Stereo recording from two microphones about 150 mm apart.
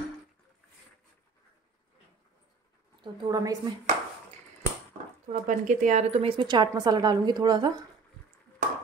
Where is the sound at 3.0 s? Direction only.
25° right (ahead or behind).